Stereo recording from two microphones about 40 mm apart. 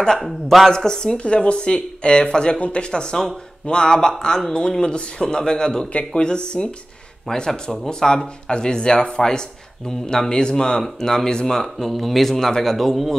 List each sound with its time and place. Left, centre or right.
0.2 s a man's voice: centre
0.7 s speech: centre
1.2 s speech: left; by 13.1 s centre